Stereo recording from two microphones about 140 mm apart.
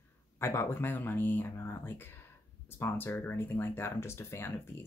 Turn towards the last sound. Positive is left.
turn(degrees=15)  # may be behind; listen again after turning